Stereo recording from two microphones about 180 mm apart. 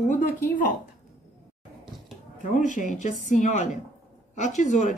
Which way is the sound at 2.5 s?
45° left (ahead or behind).